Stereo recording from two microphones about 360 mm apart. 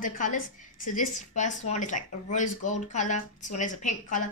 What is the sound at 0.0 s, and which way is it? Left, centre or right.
Speech, left.